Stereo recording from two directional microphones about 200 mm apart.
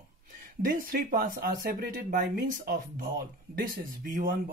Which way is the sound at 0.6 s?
45° right (ahead or behind).